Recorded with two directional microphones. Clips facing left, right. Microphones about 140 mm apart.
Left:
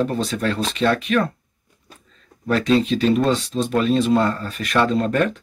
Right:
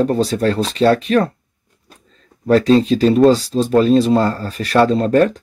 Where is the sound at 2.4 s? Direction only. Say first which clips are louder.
Right 6 dB; 35° right (ahead or behind).